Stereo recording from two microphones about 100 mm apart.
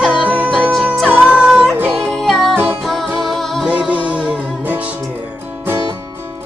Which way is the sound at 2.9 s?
Centre (ahead or behind).